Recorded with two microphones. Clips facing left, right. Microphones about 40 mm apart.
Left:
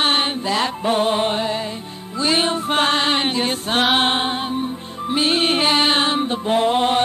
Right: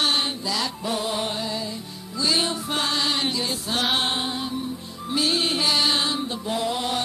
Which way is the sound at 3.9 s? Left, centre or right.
Left.